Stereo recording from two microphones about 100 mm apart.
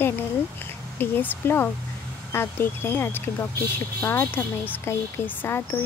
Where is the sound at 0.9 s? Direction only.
20° left (ahead or behind).